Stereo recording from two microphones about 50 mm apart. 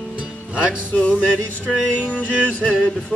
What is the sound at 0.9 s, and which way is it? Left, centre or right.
Music, left.